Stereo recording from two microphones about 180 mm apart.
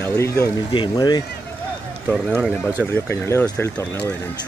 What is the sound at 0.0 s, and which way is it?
Speech, 15° left (ahead or behind).